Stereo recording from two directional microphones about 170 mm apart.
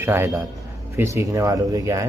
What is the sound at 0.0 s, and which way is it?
A man's voice, 15° right (ahead or behind).